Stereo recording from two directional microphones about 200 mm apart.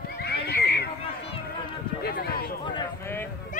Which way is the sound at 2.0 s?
50° left (ahead or behind).